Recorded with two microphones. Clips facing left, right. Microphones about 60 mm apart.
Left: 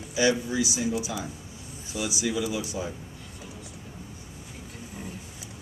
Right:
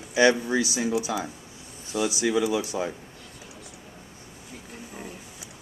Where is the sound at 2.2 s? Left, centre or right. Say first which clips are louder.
Right 4 dB; right.